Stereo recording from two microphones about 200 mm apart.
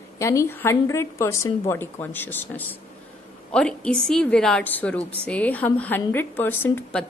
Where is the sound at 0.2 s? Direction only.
15° left (ahead or behind).